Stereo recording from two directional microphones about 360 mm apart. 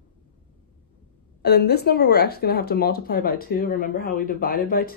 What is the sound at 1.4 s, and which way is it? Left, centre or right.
Speech, left.